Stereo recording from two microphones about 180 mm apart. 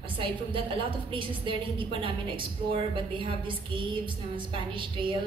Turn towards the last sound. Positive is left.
turn(degrees=-30)  # may be behind; listen again after turning